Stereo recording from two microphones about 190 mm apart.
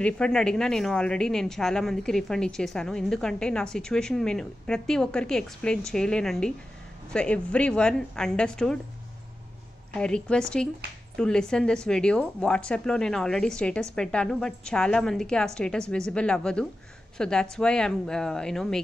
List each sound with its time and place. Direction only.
0.0 s a woman's voice: 5° left (ahead or behind)
9.9 s a woman's voice: 5° left (ahead or behind)